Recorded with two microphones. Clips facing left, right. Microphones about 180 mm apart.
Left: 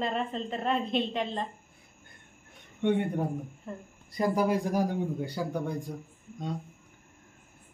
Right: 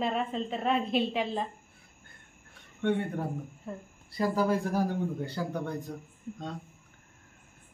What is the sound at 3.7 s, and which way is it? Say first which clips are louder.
Speech: right 2 dB; centre (ahead or behind).